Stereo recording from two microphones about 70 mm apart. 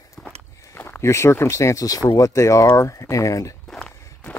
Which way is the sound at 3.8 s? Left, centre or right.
Centre.